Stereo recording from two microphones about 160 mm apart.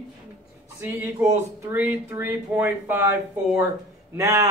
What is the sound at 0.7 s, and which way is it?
Speech, 15° right (ahead or behind).